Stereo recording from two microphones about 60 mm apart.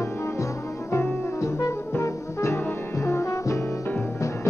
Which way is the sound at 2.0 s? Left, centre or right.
Left.